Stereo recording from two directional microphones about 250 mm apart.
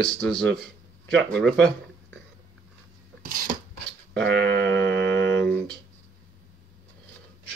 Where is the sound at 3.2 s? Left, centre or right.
Right.